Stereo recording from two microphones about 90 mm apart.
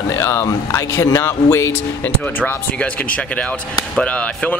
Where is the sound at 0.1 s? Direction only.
25° left (ahead or behind).